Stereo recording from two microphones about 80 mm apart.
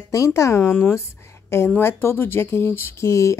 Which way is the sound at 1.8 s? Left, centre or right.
Left.